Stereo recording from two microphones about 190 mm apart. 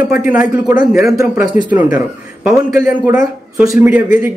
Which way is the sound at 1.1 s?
10° right (ahead or behind).